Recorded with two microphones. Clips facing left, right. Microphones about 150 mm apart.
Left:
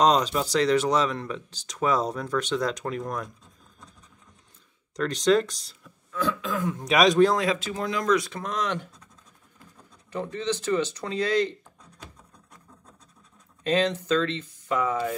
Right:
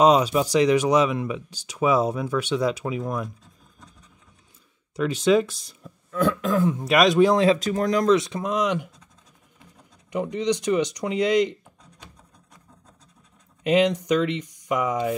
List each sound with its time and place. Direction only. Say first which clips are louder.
0.0 s speech: right 4 dB; 10° right (ahead or behind)
4.9 s speech: right 2 dB; 10° right (ahead or behind)
6.1 s throat clearing: right 6 dB; 55° right (ahead or behind)
6.8 s a man's voice: even; centre (ahead or behind)
7.3 s speech: right 7 dB; 35° right (ahead or behind)
8.1 s speech: right 5 dB; 20° right (ahead or behind)
10.1 s speech: right 5 dB; 15° right (ahead or behind)
13.7 s speech: right 4 dB; 15° right (ahead or behind)